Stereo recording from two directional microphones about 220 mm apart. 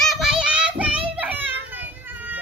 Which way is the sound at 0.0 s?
Centre (ahead or behind).